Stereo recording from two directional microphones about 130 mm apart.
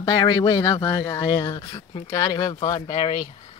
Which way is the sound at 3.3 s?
40° left (ahead or behind).